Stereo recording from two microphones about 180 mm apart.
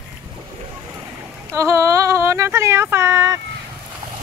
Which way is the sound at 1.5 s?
15° right (ahead or behind).